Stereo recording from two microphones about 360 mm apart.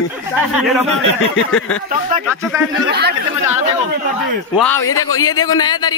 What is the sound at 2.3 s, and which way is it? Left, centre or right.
Speech, centre.